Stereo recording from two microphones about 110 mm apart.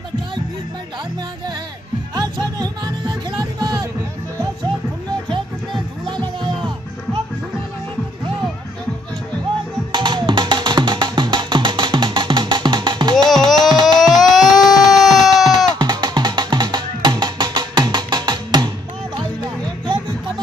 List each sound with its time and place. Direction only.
2.1 s music: 40° right (ahead or behind)
6.0 s music: 45° right (ahead or behind)
9.9 s music: 45° right (ahead or behind)
13.3 s music: 5° left (ahead or behind)
13.9 s a sound: 5° left (ahead or behind)
15.8 s music: 40° right (ahead or behind)